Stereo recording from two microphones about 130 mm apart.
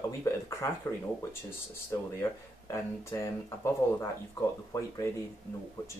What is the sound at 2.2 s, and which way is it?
Speech, 20° left (ahead or behind).